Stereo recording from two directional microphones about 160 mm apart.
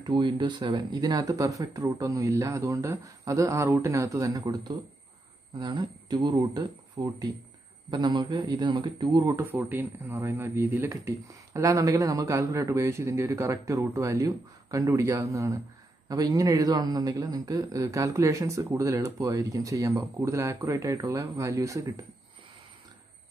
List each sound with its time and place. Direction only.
0.0 s a man's voice: 30° right (ahead or behind)
9.3 s a man's voice: 10° right (ahead or behind)